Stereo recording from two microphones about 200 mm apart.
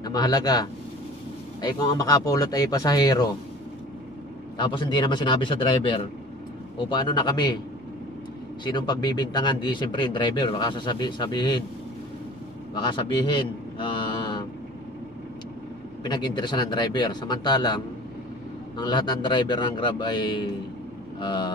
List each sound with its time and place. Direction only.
0.0 s speech: 20° left (ahead or behind)
4.6 s speech: 25° left (ahead or behind)
8.6 s speech: 20° left (ahead or behind)
12.7 s a man's voice: 25° left (ahead or behind)
16.0 s speech: 20° left (ahead or behind)